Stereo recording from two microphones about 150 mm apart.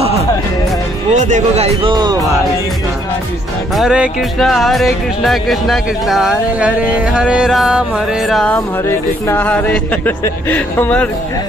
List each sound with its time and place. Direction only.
1.1 s speech: 55° right (ahead or behind)
1.8 s speech: 30° right (ahead or behind)
3.7 s speech: 5° right (ahead or behind)
8.5 s speech: 15° left (ahead or behind)